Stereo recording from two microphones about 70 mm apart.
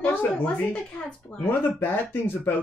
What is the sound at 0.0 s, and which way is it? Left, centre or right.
Speech, left.